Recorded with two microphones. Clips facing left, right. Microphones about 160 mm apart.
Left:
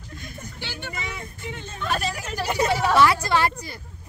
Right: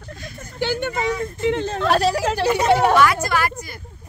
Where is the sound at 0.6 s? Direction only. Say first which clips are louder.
Right 14 dB; 50° right (ahead or behind).